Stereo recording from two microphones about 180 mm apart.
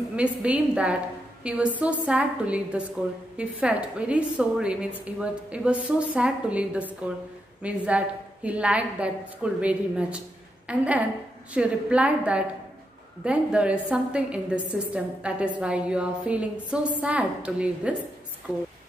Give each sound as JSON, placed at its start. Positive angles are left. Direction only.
{"t": 0.1, "sound": "a woman's voice", "side_deg": -5}
{"t": 18.5, "sound": "speech", "side_deg": 20}